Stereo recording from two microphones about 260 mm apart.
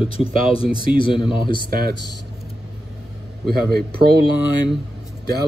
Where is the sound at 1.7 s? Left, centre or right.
Right.